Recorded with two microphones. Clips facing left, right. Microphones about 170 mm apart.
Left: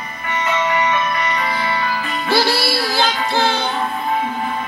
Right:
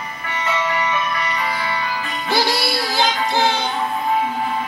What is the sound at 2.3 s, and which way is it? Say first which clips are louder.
Music: left 2 dB; 15° right (ahead or behind).